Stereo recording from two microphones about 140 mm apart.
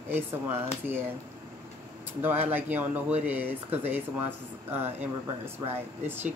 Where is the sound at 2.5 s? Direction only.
15° right (ahead or behind).